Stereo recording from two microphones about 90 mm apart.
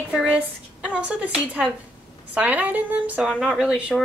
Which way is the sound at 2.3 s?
15° right (ahead or behind).